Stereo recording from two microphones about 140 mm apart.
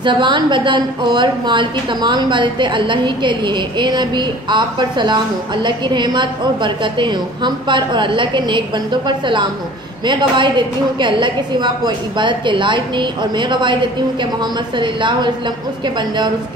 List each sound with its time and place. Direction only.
0.0 s a woman's voice: 35° right (ahead or behind)